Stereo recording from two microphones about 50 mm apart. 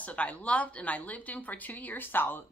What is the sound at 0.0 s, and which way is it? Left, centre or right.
Speech, left.